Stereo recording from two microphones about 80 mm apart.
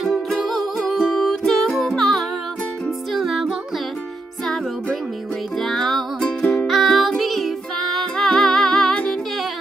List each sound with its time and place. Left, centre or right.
0.3 s music: centre
5.6 s music: centre